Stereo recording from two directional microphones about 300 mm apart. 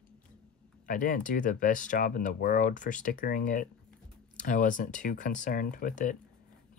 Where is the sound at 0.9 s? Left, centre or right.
Left.